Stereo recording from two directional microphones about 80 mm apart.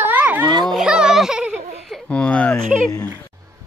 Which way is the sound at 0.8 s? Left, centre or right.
Centre.